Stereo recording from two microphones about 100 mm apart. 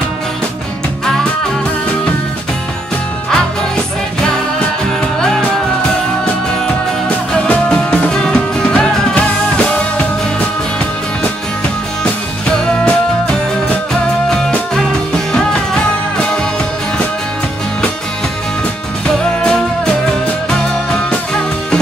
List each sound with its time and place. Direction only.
3.3 s music: 5° left (ahead or behind)
7.3 s music: 10° left (ahead or behind)
12.6 s music: 10° left (ahead or behind)
19.0 s music: 10° left (ahead or behind)